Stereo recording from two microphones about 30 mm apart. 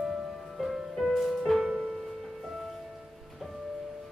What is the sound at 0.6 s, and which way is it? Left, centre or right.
Music, centre.